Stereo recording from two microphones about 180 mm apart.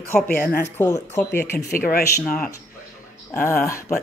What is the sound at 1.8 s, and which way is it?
Speech, 55° left (ahead or behind).